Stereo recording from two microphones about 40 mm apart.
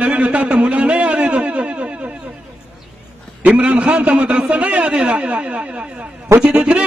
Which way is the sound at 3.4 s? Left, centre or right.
Right.